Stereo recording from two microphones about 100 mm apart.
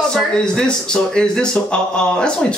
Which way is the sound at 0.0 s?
5° left (ahead or behind).